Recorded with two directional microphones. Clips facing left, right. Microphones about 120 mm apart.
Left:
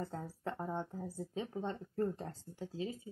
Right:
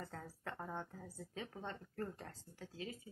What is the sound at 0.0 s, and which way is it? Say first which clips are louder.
Speech: left 7 dB; 25° left (ahead or behind).